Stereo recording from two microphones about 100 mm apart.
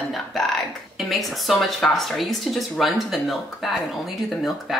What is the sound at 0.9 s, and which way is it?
Speech, centre (ahead or behind).